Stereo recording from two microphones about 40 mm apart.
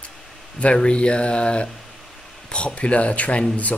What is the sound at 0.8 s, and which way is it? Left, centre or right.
Speech, left.